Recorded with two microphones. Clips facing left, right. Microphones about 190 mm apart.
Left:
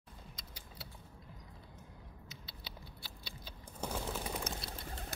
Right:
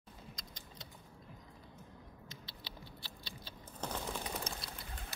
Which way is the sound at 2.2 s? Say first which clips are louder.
Even; 10° left (ahead or behind).